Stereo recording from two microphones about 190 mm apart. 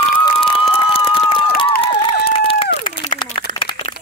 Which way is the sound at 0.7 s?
30° left (ahead or behind).